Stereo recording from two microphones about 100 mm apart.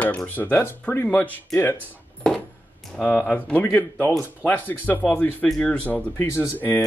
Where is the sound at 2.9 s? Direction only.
10° left (ahead or behind).